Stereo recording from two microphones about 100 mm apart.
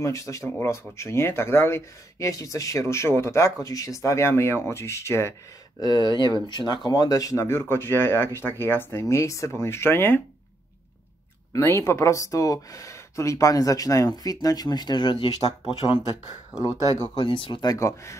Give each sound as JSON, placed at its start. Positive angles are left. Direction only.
{"t": 0.0, "sound": "speech", "side_deg": 30}
{"t": 5.8, "sound": "speech", "side_deg": 45}
{"t": 11.5, "sound": "speech", "side_deg": 30}
{"t": 17.0, "sound": "speech", "side_deg": 50}
{"t": 17.7, "sound": "speech", "side_deg": 30}